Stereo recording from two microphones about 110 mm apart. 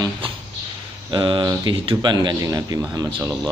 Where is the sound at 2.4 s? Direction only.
30° right (ahead or behind).